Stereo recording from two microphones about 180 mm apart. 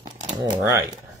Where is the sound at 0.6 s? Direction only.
15° right (ahead or behind).